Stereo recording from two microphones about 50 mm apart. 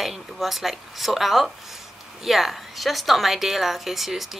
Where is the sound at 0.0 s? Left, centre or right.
Centre.